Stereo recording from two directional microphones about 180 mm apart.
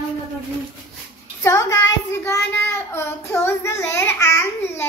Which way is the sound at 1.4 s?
15° left (ahead or behind).